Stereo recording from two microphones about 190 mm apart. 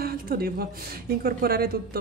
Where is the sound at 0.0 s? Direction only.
50° right (ahead or behind).